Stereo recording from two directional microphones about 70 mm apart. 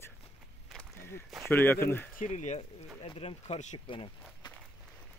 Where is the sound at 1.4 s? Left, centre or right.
Left.